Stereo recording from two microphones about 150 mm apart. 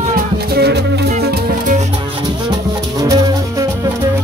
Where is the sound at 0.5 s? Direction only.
90° right.